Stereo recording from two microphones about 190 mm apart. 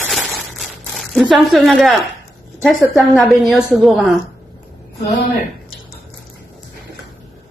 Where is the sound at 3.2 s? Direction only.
Centre (ahead or behind).